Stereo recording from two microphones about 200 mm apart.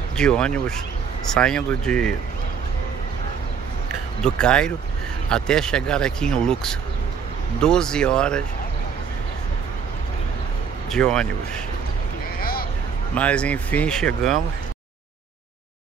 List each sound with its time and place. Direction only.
0.2 s speech: 5° left (ahead or behind)
4.2 s speech: 5° left (ahead or behind)
10.9 s speech: 5° left (ahead or behind)
12.4 s a sound: 45° left (ahead or behind)
13.1 s speech: 5° left (ahead or behind)